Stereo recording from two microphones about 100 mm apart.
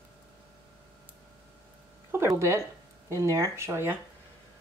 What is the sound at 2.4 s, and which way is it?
Speech, 30° right (ahead or behind).